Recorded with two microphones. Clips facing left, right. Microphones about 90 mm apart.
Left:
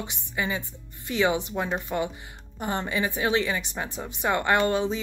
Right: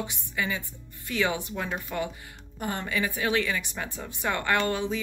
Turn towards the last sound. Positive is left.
turn(degrees=25)  # may be behind; listen again after turning